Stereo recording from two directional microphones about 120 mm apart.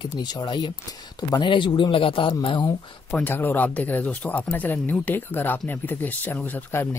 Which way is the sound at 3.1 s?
15° left (ahead or behind).